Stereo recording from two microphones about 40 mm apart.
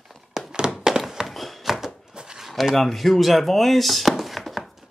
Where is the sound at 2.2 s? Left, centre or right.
Centre.